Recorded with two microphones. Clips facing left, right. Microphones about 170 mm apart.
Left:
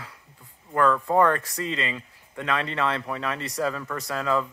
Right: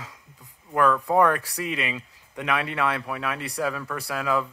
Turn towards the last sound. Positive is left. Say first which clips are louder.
# even
turn(degrees=-10)  # may be behind; listen again after turning